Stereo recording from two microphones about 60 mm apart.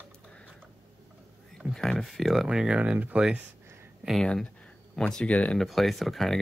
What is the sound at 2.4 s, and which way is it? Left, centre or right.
Speech, centre.